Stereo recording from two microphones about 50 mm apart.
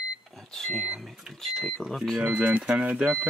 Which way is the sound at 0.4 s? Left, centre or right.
Centre.